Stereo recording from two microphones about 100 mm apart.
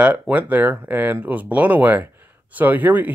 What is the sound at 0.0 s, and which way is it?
Speech, 15° right (ahead or behind).